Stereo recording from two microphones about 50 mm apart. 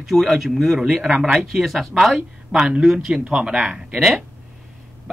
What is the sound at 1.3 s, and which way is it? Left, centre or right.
Speech, centre.